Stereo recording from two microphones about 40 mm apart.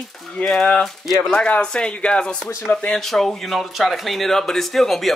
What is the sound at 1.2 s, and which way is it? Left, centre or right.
Speech, left.